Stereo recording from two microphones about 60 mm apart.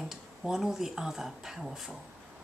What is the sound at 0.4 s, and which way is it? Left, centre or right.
A woman's voice, centre.